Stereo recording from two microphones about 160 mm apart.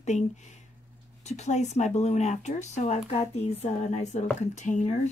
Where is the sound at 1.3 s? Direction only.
45° left (ahead or behind).